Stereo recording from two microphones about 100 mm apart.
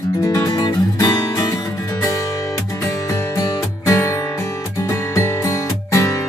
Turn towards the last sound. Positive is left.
turn(degrees=30)  # may be behind; listen again after turning